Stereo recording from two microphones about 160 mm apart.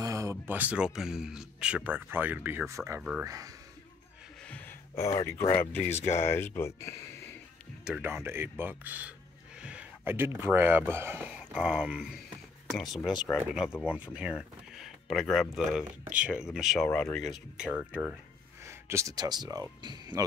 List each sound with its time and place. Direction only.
0.0 s speech: 20° right (ahead or behind)
3.3 s speech: 20° right (ahead or behind)
4.5 s gasp: 15° left (ahead or behind)
5.2 s speech: 15° left (ahead or behind)
5.9 s speech: 45° left (ahead or behind)
6.2 s speech: 15° left (ahead or behind)
7.8 s speech: 10° right (ahead or behind); by 13.9 s 10° left (ahead or behind)
13.9 s speech: 10° right (ahead or behind)
18.6 s speech: 15° right (ahead or behind)